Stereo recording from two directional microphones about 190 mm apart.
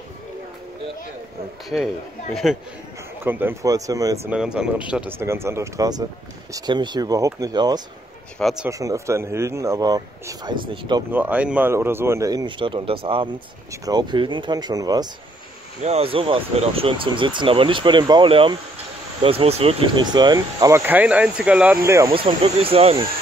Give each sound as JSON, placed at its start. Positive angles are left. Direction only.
{"t": 1.7, "sound": "speech", "side_deg": 5}
{"t": 4.3, "sound": "speech", "side_deg": -5}
{"t": 8.4, "sound": "speech", "side_deg": 0}
{"t": 8.6, "sound": "speech", "side_deg": -15}
{"t": 11.1, "sound": "speech", "side_deg": -10}
{"t": 15.8, "sound": "speech", "side_deg": -30}
{"t": 22.1, "sound": "speech", "side_deg": -30}